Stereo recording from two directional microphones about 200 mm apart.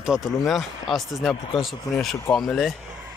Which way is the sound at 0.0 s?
5° right (ahead or behind).